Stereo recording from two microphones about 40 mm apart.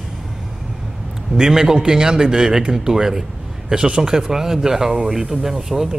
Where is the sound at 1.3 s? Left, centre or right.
Centre.